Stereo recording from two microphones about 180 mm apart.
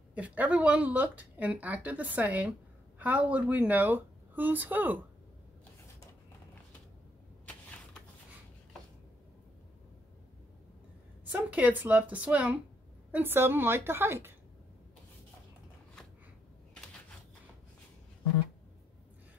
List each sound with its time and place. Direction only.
0.1 s speech: 10° right (ahead or behind)
11.3 s speech: 10° right (ahead or behind)